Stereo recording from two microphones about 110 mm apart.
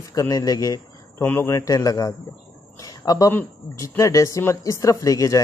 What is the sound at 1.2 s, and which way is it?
Speech, 20° left (ahead or behind).